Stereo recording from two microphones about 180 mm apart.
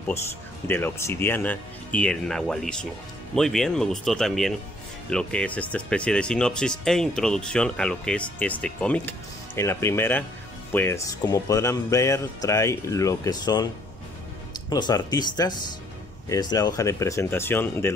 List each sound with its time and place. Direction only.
0.7 s speech: 10° left (ahead or behind)
14.7 s speech: 20° left (ahead or behind)